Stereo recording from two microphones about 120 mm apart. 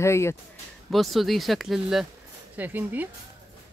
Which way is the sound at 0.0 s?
20° left (ahead or behind).